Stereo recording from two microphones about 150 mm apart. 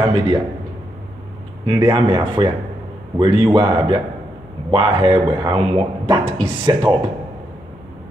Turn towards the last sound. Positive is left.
turn(degrees=-30)  # may be behind; listen again after turning